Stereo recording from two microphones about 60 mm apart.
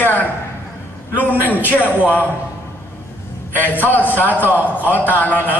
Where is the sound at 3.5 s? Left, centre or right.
Left.